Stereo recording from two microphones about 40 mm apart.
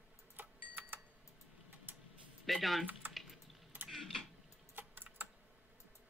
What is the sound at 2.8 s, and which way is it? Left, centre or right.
Speech, right.